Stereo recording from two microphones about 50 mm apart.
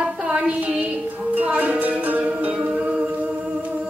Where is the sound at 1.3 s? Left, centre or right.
Right.